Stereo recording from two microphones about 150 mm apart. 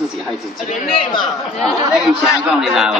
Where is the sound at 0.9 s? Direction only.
35° left (ahead or behind).